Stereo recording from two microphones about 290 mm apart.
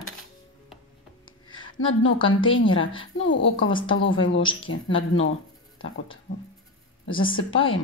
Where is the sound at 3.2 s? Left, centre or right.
Left.